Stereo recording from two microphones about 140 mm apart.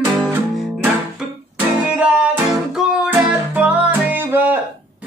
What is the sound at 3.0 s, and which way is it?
Music, 10° right (ahead or behind).